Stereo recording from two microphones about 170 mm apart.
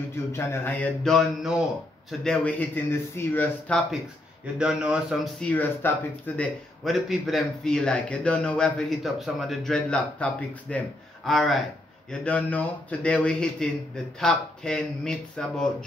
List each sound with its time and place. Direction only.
0.3 s a man's voice: 15° left (ahead or behind)
4.6 s a man's voice: 5° right (ahead or behind)
5.4 s a man's voice: 10° left (ahead or behind)